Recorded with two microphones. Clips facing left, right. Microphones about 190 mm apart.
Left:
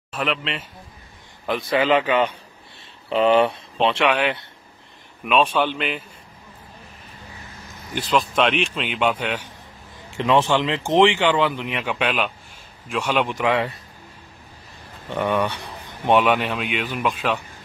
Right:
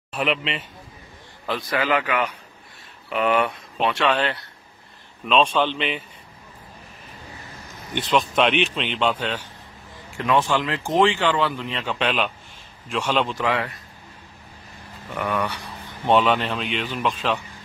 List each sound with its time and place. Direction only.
0.1 s speech: centre (ahead or behind)
1.4 s speech: 20° left (ahead or behind)
5.2 s speech: 5° left (ahead or behind)
7.9 s speech: centre (ahead or behind)
10.1 s speech: 25° left (ahead or behind)
15.0 s speech: 20° left (ahead or behind)